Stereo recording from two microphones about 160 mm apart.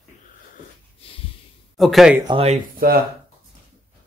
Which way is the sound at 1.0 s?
35° left (ahead or behind).